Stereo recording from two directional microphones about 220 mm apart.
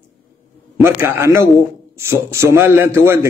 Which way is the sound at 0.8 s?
10° right (ahead or behind).